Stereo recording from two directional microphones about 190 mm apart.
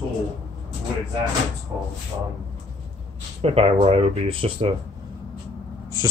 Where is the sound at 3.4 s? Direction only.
30° right (ahead or behind).